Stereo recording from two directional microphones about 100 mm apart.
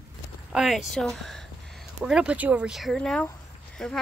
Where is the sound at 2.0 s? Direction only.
10° right (ahead or behind); by 4.0 s 5° left (ahead or behind).